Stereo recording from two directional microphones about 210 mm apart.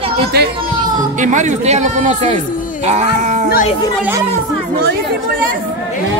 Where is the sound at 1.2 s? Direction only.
35° right (ahead or behind).